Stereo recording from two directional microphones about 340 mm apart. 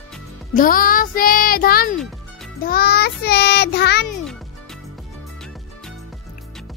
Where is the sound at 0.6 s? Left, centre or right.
Left.